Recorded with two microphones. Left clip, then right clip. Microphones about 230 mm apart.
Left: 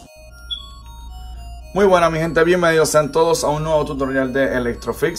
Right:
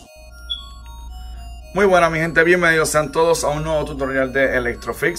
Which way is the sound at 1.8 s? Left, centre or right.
Centre.